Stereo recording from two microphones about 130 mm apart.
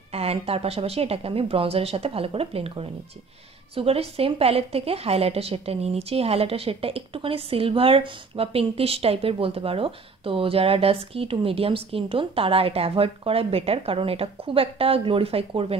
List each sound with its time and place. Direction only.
0.1 s a woman's voice: 50° right (ahead or behind)